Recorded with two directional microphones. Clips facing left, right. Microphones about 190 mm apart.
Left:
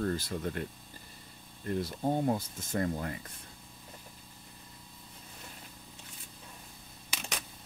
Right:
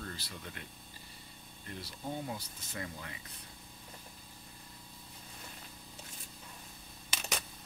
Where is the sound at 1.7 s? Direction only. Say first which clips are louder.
Left 11 dB; 50° left (ahead or behind).